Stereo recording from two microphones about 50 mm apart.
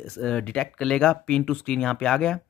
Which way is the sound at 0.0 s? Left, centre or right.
Centre.